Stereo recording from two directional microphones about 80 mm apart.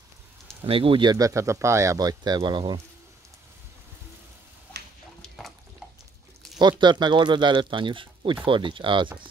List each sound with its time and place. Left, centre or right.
0.5 s a sound: centre
0.8 s speech: right
1.1 s speech: right
2.0 s speech: right
6.8 s speech: right